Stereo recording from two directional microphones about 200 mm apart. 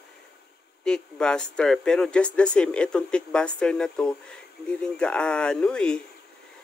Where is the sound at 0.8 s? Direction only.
5° left (ahead or behind).